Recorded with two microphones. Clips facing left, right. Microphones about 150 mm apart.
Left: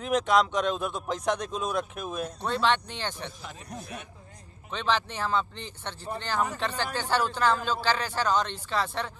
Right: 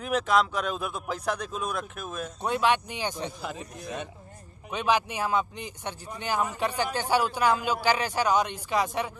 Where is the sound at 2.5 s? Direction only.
10° right (ahead or behind).